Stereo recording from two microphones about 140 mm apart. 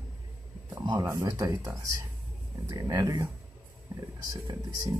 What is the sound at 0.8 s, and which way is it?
Speech, 25° right (ahead or behind).